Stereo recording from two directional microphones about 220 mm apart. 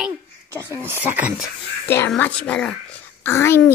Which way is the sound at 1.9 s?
10° left (ahead or behind).